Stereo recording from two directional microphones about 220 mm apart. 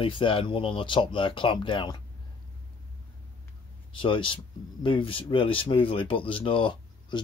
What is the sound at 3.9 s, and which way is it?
Speech, 20° left (ahead or behind).